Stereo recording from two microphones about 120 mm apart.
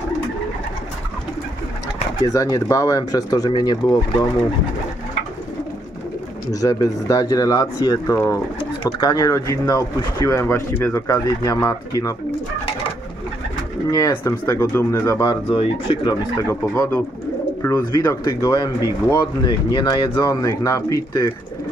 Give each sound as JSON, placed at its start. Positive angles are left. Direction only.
{"t": 2.2, "sound": "speech", "side_deg": 25}
{"t": 6.5, "sound": "speech", "side_deg": 30}
{"t": 13.8, "sound": "speech", "side_deg": 30}
{"t": 15.5, "sound": "speech", "side_deg": 45}
{"t": 16.3, "sound": "speech", "side_deg": 25}
{"t": 18.5, "sound": "speech", "side_deg": 35}